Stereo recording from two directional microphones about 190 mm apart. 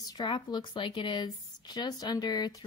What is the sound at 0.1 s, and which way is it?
Speech, 25° left (ahead or behind).